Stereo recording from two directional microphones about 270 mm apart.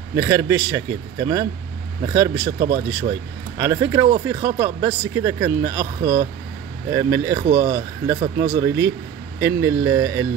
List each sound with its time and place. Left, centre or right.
0.1 s speech: centre
3.5 s speech: centre
8.2 s speech: right
8.5 s speech: centre